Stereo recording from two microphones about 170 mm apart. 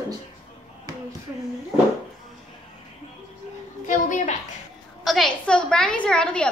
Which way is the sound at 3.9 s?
50° left (ahead or behind).